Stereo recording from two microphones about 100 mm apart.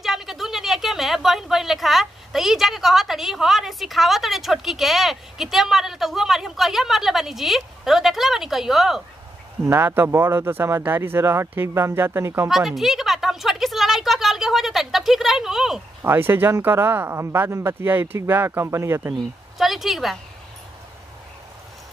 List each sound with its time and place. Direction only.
0.0 s speech: 5° right (ahead or behind)
9.7 s speech: 25° right (ahead or behind)
12.4 s a woman's voice: centre (ahead or behind)
16.0 s speech: 25° right (ahead or behind)
19.6 s a woman's voice: centre (ahead or behind)